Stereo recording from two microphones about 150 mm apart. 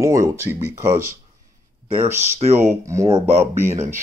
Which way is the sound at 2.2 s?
50° right (ahead or behind).